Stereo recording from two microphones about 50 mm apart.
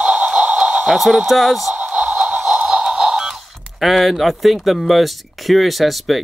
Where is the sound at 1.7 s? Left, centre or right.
Right.